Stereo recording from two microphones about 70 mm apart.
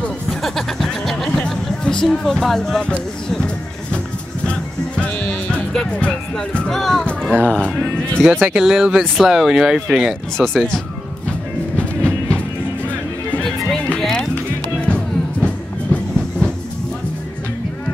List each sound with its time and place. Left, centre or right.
0.3 s music: centre
6.5 s speech: centre
8.2 s speech: centre
10.3 s speech: centre
11.2 s music: centre